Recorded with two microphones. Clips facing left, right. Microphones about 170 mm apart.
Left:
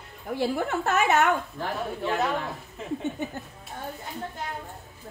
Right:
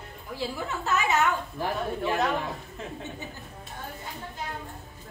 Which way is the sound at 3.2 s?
55° left (ahead or behind).